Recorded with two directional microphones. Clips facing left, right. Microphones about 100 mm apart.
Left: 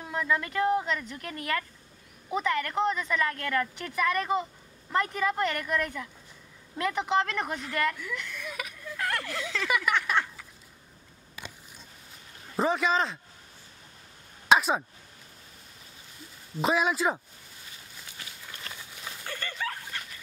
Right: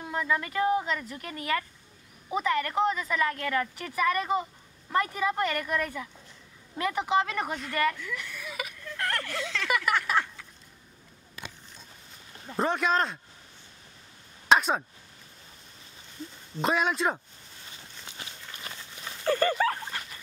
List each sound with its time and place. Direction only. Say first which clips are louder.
0.0 s speech: even; centre (ahead or behind)
8.8 s a sound: left 1 dB; 5° left (ahead or behind)
12.5 s speech: even; centre (ahead or behind)
14.5 s speech: even; centre (ahead or behind)
16.5 s speech: left 1 dB; 5° left (ahead or behind)
18.0 s walk: right 2 dB; 20° right (ahead or behind)
19.2 s a sound: right 12 dB; 45° right (ahead or behind)